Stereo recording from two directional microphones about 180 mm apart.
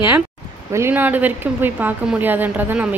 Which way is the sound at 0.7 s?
10° right (ahead or behind).